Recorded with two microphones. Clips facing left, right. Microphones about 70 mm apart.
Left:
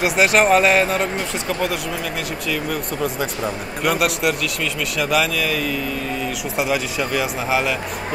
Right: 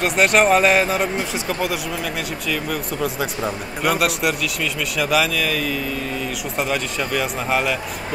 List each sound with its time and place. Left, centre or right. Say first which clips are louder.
0.0 s a man's voice: even; centre